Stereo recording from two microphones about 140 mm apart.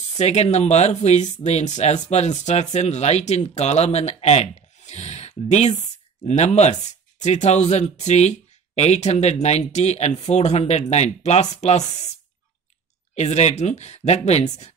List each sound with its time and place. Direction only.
0.2 s speech: 55° left (ahead or behind)
13.1 s speech: 50° left (ahead or behind)